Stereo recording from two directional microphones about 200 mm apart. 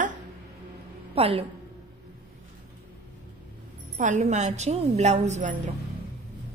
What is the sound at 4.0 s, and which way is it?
A woman's voice, 40° right (ahead or behind).